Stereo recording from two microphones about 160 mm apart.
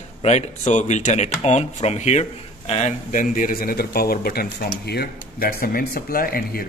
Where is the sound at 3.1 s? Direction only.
55° left (ahead or behind).